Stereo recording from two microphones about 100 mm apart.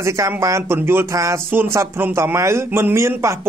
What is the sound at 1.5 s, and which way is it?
A man's voice, 20° right (ahead or behind).